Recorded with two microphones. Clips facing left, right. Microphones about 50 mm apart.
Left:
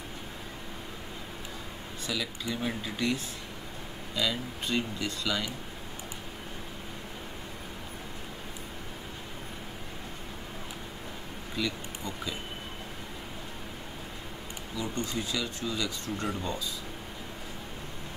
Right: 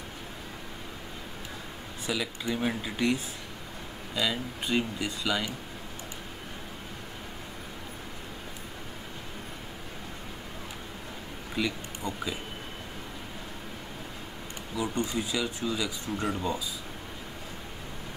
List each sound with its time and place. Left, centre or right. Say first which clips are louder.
2.1 s speech: right 3 dB; centre
11.5 s speech: right 2 dB; centre
14.8 s speech: right 3 dB; centre